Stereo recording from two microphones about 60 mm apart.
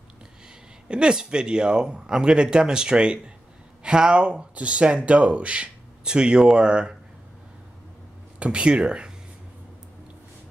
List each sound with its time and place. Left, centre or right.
0.8 s speech: centre
8.4 s speech: centre